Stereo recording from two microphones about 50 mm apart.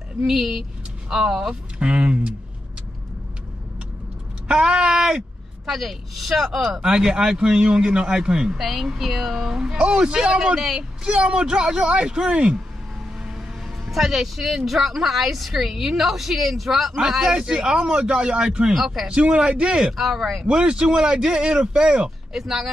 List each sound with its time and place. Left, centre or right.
0.2 s speech: centre
1.5 s speech: right
4.5 s speech: centre
10.6 s speech: centre
11.1 s speech: centre
13.8 s speech: centre
20.4 s speech: centre
22.3 s speech: centre